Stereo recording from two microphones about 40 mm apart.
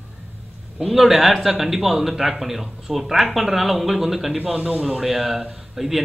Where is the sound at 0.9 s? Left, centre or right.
Centre.